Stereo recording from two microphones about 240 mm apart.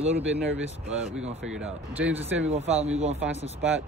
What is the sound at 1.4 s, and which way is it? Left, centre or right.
Speech, centre.